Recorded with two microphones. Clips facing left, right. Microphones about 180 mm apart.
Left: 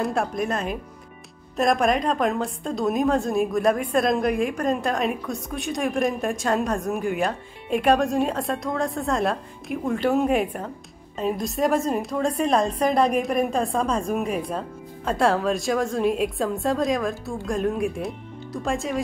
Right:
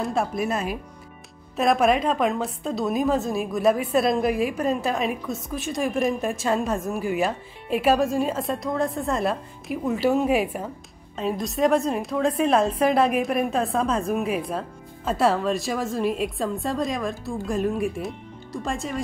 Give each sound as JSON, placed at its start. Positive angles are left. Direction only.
{"t": 0.0, "sound": "a woman's voice", "side_deg": 0}